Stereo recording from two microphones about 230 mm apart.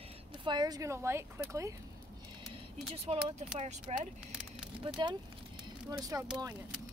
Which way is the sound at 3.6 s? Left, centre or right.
Right.